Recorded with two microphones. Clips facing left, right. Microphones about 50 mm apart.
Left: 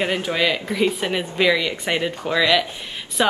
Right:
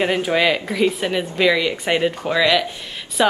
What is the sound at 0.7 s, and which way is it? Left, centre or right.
Speech, centre.